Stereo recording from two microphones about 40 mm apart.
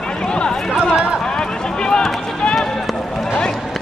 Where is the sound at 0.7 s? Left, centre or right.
Centre.